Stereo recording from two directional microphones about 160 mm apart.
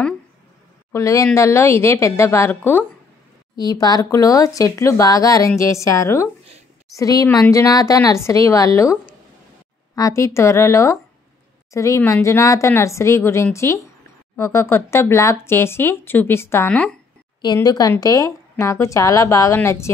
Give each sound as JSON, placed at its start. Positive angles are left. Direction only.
{"t": 0.9, "sound": "speech", "side_deg": 20}
{"t": 9.9, "sound": "speech", "side_deg": 20}
{"t": 17.4, "sound": "speech", "side_deg": 25}